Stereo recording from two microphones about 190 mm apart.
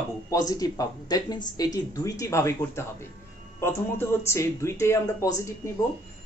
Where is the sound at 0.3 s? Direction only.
20° left (ahead or behind).